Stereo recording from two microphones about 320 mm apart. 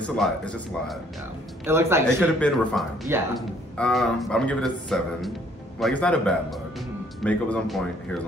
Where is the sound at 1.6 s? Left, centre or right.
Centre.